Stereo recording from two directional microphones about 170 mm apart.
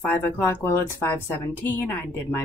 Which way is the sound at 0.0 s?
10° left (ahead or behind).